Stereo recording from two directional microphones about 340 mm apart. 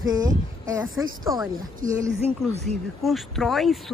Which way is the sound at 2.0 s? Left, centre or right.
Centre.